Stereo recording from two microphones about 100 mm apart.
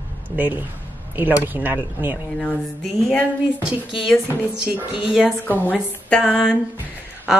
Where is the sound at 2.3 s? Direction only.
10° left (ahead or behind).